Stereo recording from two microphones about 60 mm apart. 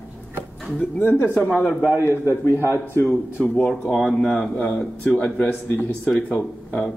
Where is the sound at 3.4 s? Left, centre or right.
Centre.